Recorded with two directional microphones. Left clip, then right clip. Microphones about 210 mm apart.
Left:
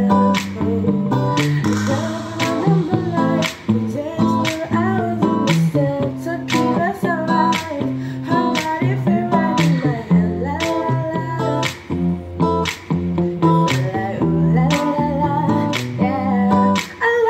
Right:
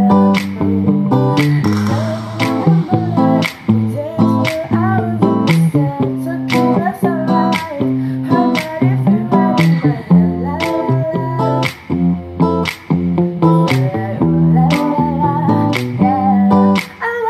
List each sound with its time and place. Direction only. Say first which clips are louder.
0.1 s music: right 3 dB; 50° right (ahead or behind)
12.4 s music: right 2 dB; 45° right (ahead or behind)